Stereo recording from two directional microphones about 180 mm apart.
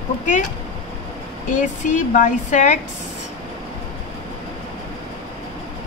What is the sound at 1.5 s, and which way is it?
Speech, 45° left (ahead or behind).